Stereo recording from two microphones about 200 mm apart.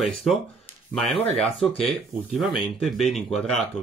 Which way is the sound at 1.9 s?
Centre (ahead or behind).